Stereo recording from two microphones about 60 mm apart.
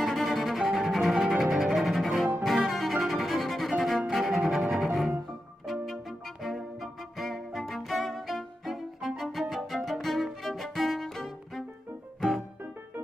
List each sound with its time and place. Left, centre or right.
0.0 s cello: centre
5.7 s music: centre